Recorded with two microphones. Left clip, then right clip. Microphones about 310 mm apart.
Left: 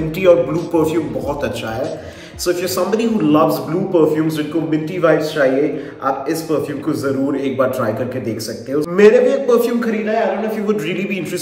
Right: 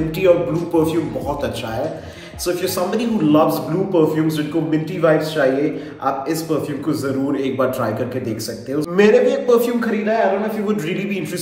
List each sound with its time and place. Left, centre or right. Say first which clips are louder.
0.2 s a man's voice: left 3 dB; centre
2.4 s a man's voice: left 2 dB; centre